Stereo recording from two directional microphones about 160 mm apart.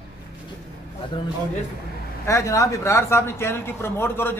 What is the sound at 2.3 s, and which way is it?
Speech, 20° left (ahead or behind).